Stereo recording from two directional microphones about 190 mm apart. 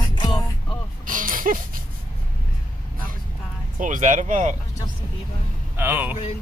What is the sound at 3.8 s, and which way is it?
Speech, 45° right (ahead or behind).